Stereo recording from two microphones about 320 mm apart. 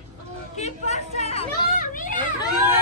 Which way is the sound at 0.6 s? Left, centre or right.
Left.